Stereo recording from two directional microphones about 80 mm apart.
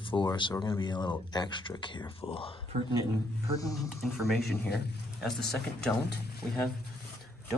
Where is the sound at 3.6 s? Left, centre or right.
Left.